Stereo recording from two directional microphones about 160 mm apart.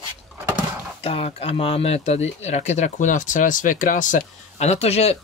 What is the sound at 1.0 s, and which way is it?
Speech, 35° left (ahead or behind).